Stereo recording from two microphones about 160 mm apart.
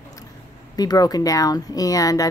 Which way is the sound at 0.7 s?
25° left (ahead or behind).